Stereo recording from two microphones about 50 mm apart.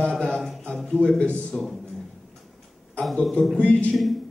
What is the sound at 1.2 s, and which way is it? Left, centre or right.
Speech, left.